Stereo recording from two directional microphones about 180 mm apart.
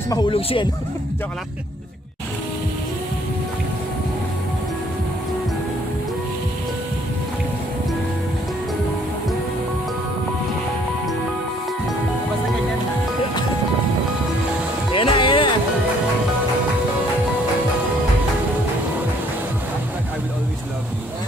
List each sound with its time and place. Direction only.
0.1 s speech: 30° left (ahead or behind)
14.9 s music: 30° left (ahead or behind)